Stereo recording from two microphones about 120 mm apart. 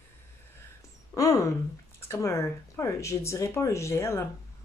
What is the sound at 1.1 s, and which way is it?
Speech, 25° left (ahead or behind).